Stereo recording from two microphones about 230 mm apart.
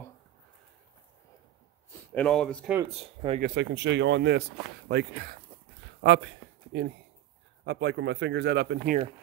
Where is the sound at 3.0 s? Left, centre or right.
Right.